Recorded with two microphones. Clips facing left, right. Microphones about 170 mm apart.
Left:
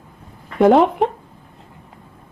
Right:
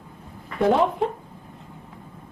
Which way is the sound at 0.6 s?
75° left (ahead or behind).